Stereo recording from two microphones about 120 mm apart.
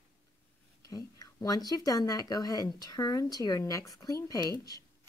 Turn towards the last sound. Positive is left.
turn(degrees=30)  # may be behind; listen again after turning